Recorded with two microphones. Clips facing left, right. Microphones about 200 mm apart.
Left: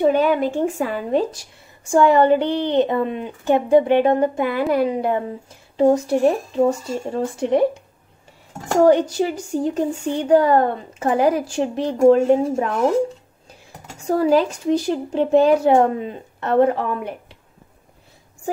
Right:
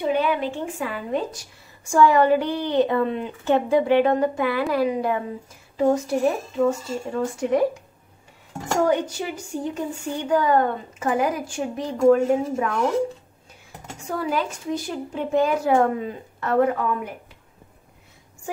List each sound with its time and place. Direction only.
0.0 s a woman's voice: 45° left (ahead or behind)
1.9 s a woman's voice: 25° left (ahead or behind)
8.8 s a woman's voice: 35° left (ahead or behind)
14.0 s speech: 35° left (ahead or behind)